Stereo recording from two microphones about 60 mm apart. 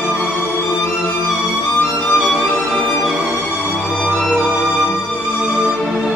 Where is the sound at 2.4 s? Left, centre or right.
Left.